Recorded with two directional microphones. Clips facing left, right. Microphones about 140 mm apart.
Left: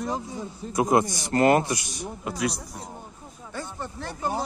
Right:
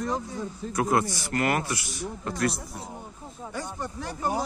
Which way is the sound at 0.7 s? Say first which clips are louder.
Left 4 dB; 15° left (ahead or behind).